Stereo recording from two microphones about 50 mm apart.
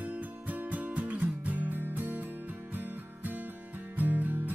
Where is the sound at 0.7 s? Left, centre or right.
Right.